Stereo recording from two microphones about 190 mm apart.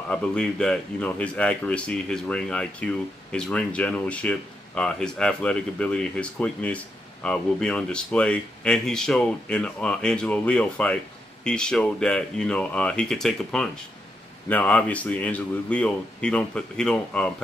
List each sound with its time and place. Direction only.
0.1 s speech: 5° left (ahead or behind)